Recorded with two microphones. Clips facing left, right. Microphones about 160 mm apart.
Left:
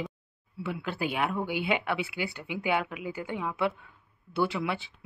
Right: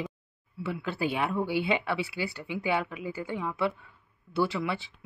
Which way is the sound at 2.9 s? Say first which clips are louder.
Even; 15° left (ahead or behind).